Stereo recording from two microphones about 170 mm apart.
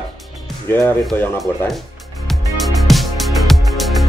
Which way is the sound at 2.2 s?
Centre (ahead or behind).